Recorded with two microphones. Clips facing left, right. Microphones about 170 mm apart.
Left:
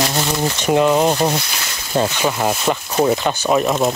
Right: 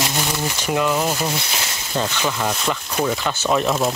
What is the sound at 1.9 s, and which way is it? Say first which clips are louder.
Speech: left 5 dB; 40° left (ahead or behind).